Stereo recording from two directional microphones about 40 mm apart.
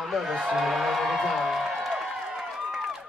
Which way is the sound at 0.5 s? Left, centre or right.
Centre.